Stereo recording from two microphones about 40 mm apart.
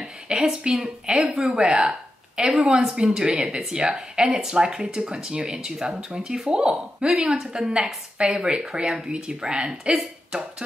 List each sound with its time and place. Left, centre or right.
0.0 s a woman's voice: centre
1.3 s speech: centre
1.6 s speech: right
3.0 s a woman's voice: right